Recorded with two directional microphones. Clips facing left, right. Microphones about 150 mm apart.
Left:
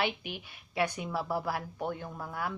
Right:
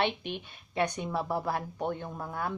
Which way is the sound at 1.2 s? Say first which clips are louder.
Right 1 dB; 25° right (ahead or behind).